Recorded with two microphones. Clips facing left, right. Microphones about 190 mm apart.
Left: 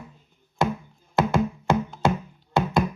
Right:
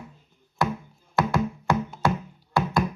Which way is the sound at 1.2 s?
25° left (ahead or behind).